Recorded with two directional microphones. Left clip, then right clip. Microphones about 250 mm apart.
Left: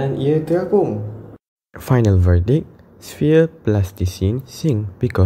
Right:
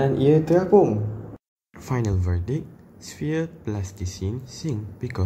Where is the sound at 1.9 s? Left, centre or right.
Left.